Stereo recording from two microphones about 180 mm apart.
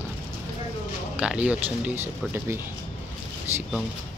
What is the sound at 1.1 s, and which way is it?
Speech, 5° right (ahead or behind).